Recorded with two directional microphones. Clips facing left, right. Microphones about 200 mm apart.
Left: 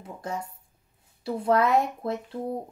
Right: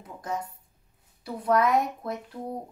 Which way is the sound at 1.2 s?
25° left (ahead or behind).